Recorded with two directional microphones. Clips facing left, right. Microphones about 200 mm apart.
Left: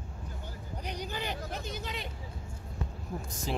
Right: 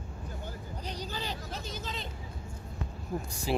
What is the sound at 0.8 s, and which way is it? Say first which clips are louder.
Hubbub: left 1 dB; 15° left (ahead or behind).